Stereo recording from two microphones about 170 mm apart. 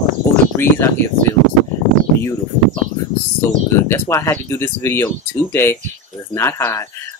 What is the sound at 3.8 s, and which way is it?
Speech, 15° left (ahead or behind).